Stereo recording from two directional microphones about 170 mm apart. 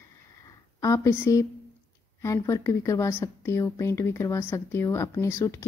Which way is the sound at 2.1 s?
20° left (ahead or behind).